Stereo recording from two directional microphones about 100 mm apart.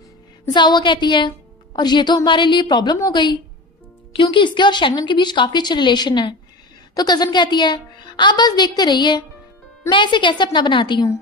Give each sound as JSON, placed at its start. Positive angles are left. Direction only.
{"t": 0.5, "sound": "speech", "side_deg": 50}